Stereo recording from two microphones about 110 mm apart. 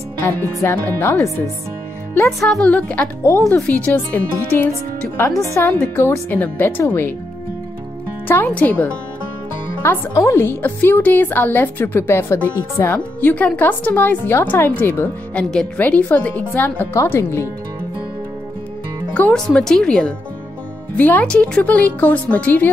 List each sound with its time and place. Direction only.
0.2 s a woman's voice: 25° left (ahead or behind)
2.2 s speech: 5° left (ahead or behind)
3.3 s a woman's voice: 25° left (ahead or behind)
3.6 s speech: 10° left (ahead or behind)
5.4 s a woman's voice: 25° left (ahead or behind)
8.3 s speech: 15° left (ahead or behind)
9.8 s a woman's voice: 25° left (ahead or behind)
19.1 s speech: 10° left (ahead or behind)